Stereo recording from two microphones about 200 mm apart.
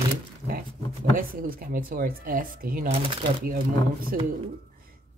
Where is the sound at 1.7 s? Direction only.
45° right (ahead or behind).